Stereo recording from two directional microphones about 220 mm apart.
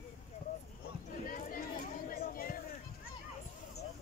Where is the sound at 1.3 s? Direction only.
40° left (ahead or behind).